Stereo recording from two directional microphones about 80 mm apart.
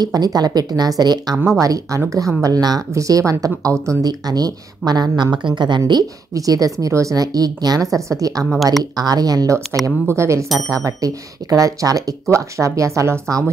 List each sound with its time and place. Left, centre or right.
0.0 s a woman's voice: right
1.6 s a woman's voice: right
6.3 s speech: right